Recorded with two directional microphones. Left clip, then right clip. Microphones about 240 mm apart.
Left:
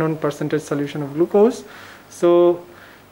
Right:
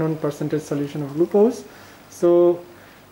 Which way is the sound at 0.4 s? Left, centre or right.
Centre.